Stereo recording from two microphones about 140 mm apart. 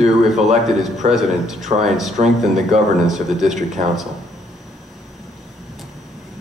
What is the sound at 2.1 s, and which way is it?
Speech, 55° right (ahead or behind).